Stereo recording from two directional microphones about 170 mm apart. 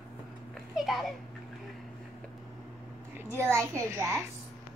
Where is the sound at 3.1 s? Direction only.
15° right (ahead or behind).